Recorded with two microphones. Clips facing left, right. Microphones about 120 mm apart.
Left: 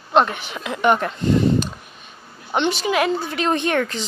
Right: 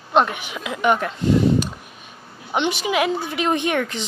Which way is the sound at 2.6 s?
15° right (ahead or behind).